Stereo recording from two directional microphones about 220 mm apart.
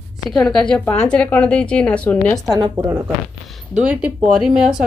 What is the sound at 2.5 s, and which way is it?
Speech, 15° right (ahead or behind).